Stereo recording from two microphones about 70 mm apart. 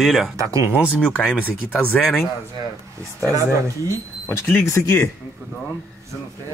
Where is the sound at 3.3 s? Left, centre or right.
Right.